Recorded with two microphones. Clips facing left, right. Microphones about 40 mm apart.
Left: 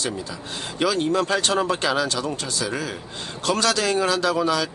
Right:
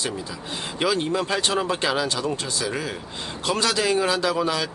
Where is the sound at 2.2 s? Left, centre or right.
Right.